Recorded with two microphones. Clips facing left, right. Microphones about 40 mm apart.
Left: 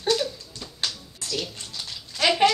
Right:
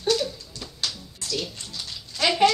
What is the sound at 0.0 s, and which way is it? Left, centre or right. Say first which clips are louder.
Dog: even; left.